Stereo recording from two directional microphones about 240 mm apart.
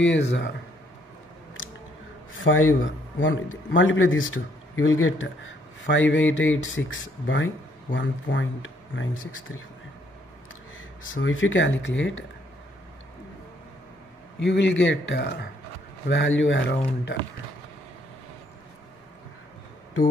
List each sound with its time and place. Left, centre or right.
0.0 s speech: left
2.4 s a man's voice: left
11.1 s speech: left
14.4 s speech: left